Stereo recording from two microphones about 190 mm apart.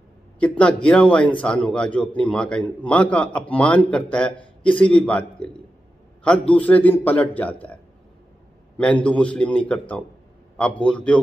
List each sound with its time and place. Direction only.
0.4 s a man's voice: 5° left (ahead or behind)